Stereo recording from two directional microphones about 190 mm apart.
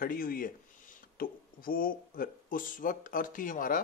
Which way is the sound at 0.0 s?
50° left (ahead or behind).